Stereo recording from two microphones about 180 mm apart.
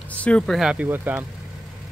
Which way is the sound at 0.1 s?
5° left (ahead or behind).